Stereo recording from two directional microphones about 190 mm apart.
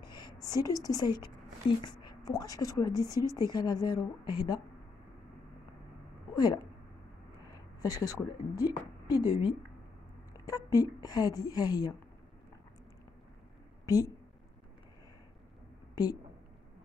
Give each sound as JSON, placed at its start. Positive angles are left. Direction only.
{"t": 0.0, "sound": "a woman's voice", "side_deg": 20}
{"t": 6.3, "sound": "speech", "side_deg": 20}
{"t": 7.8, "sound": "speech", "side_deg": 20}
{"t": 10.3, "sound": "speech", "side_deg": 20}
{"t": 13.8, "sound": "speech", "side_deg": 20}
{"t": 15.9, "sound": "a sound", "side_deg": 20}